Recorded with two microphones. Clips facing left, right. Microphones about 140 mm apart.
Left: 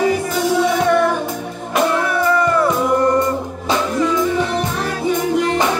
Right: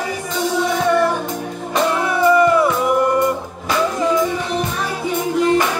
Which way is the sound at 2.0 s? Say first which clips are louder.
Right 3 dB; 10° right (ahead or behind).